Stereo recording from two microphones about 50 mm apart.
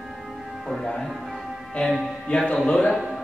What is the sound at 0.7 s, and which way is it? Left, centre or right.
Speech, centre.